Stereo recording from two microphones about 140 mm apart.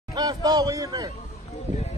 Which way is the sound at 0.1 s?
30° right (ahead or behind).